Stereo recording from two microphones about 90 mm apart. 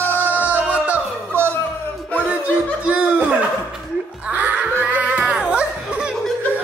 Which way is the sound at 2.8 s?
15° right (ahead or behind).